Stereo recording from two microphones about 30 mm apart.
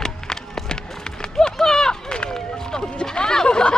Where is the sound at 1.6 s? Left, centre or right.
Centre.